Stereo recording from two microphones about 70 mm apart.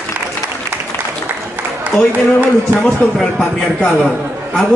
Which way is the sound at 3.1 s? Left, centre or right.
Centre.